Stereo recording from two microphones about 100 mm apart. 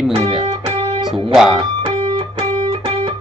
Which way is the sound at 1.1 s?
5° right (ahead or behind).